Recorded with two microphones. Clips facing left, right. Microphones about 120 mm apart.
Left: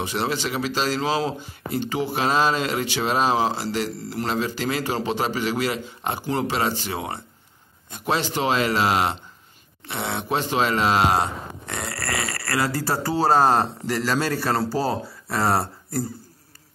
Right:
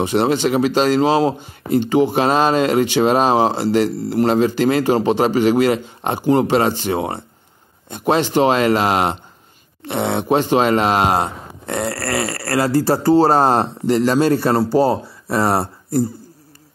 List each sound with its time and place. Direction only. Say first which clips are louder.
0.0 s speech: right 9 dB; 55° right (ahead or behind)
1.0 s speech: right 8 dB; 45° right (ahead or behind)
11.9 s burping: right 7 dB; 40° right (ahead or behind)
12.6 s speech: right 13 dB; 30° right (ahead or behind)